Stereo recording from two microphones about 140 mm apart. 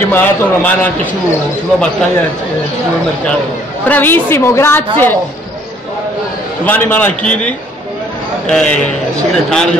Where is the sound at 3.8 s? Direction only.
15° left (ahead or behind).